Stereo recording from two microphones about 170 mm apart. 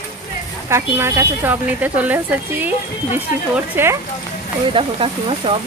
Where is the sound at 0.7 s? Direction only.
15° right (ahead or behind).